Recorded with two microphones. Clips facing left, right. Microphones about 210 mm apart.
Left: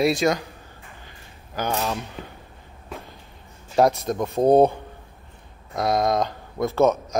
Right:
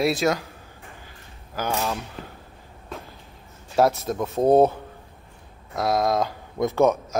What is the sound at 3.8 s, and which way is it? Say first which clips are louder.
A man's voice: left 1 dB; 5° right (ahead or behind).